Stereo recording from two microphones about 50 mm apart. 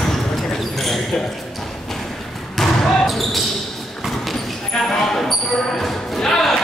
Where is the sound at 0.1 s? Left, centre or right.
Centre.